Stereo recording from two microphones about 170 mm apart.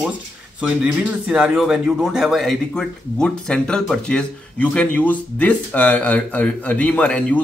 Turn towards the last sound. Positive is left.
turn(degrees=5)  # may be behind; listen again after turning